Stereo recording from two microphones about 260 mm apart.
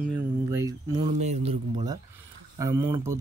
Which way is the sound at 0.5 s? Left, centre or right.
Centre.